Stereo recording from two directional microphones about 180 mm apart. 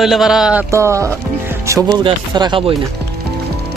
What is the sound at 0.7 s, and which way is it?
Speech, 15° right (ahead or behind).